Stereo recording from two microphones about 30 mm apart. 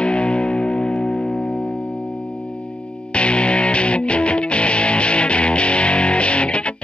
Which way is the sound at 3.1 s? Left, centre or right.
Left.